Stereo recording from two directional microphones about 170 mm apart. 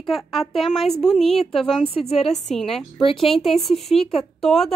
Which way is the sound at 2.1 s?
35° left (ahead or behind).